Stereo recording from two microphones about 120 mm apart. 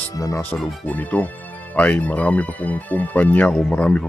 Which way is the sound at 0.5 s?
10° left (ahead or behind).